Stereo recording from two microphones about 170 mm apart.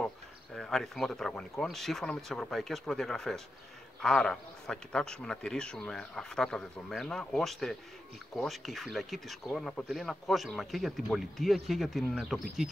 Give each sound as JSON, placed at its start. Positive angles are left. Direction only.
{"t": 0.6, "sound": "speech", "side_deg": 0}